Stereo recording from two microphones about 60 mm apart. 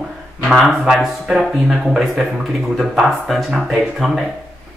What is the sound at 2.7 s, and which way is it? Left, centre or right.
Speech, centre.